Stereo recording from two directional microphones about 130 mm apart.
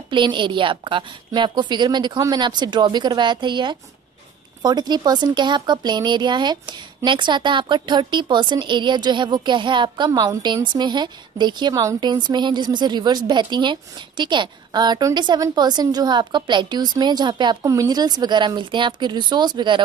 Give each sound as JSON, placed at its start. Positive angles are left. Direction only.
{"t": 0.1, "sound": "a woman's voice", "side_deg": -40}